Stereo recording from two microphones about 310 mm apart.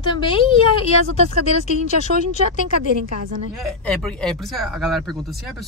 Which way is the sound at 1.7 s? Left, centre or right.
Left.